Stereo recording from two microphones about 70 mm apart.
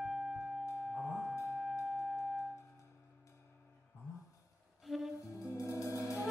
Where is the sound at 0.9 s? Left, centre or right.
Centre.